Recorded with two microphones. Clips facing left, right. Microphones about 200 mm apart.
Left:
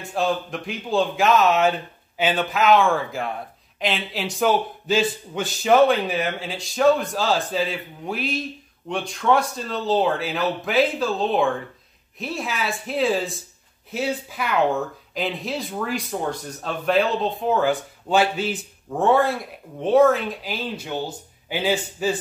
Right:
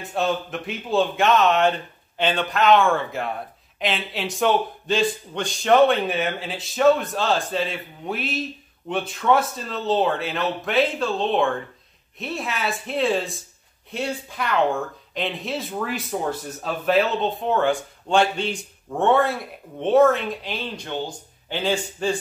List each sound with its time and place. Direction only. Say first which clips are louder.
0.0 s speech: even; centre (ahead or behind)